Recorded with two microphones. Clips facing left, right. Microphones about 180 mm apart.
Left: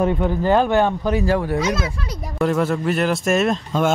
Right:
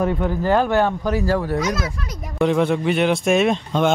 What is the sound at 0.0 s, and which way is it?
Speech, 20° left (ahead or behind).